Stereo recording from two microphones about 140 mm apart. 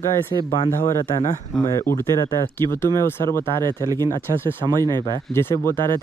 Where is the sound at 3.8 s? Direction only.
25° right (ahead or behind).